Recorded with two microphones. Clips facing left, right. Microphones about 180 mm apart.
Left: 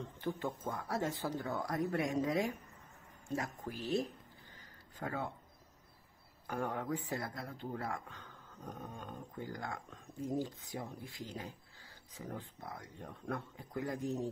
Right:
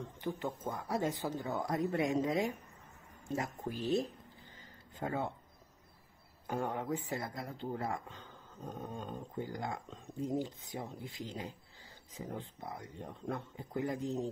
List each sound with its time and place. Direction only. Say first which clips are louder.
0.0 s speech: even; 15° right (ahead or behind)
6.4 s speech: right 2 dB; 20° right (ahead or behind)